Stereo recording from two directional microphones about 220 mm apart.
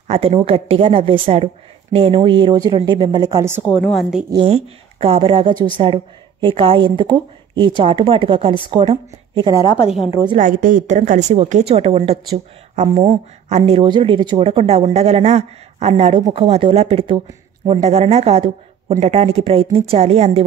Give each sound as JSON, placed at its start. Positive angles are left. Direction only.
{"t": 0.1, "sound": "speech", "side_deg": -25}
{"t": 4.3, "sound": "speech", "side_deg": -25}
{"t": 10.4, "sound": "a woman's voice", "side_deg": -35}